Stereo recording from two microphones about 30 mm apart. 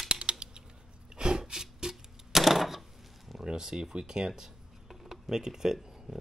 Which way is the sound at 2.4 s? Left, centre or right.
Centre.